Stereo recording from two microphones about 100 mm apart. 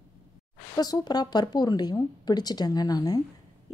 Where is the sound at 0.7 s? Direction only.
40° left (ahead or behind).